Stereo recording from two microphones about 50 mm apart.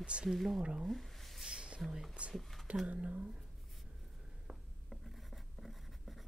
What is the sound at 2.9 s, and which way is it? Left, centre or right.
Speech, right.